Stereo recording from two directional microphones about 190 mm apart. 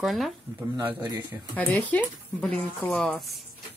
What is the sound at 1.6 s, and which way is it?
Speech, 10° left (ahead or behind).